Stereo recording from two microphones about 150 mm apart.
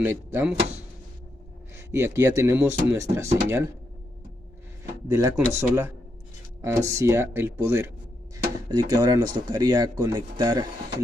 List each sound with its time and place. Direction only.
0.0 s speech: 15° right (ahead or behind)
1.8 s speech: 15° right (ahead or behind)
5.0 s speech: 20° right (ahead or behind)
8.6 s speech: 25° right (ahead or behind)